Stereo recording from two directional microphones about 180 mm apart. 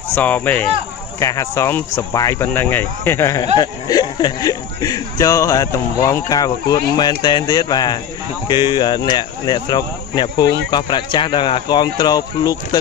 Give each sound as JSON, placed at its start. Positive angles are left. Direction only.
{"t": 0.1, "sound": "speech", "side_deg": 10}